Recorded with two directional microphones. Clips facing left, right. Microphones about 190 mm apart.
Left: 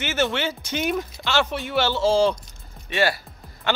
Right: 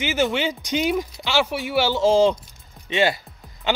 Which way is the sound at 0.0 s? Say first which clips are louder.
Right 2 dB; 15° right (ahead or behind).